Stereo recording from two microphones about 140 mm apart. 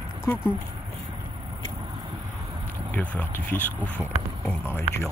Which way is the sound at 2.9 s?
10° left (ahead or behind).